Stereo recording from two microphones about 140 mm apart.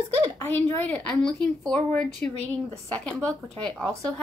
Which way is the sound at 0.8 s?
10° left (ahead or behind).